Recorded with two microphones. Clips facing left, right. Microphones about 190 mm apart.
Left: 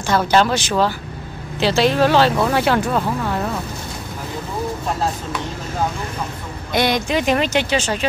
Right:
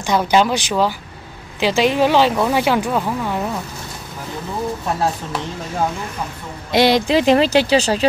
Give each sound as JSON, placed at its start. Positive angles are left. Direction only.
{"t": 0.0, "sound": "speech", "side_deg": -15}
{"t": 6.7, "sound": "speech", "side_deg": -25}